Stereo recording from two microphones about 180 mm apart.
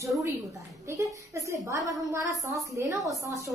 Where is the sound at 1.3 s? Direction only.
20° right (ahead or behind).